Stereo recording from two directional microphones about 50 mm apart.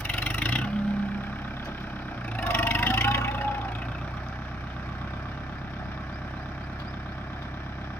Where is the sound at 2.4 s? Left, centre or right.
Left.